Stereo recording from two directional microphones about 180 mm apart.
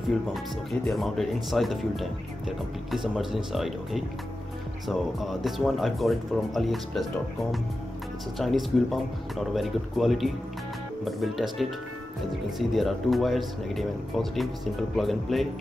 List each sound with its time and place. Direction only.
0.3 s speech: centre (ahead or behind)
8.4 s speech: centre (ahead or behind)